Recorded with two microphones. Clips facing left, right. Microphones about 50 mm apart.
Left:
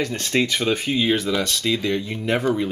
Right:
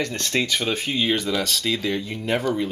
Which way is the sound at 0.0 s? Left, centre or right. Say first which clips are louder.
Left 2 dB; centre.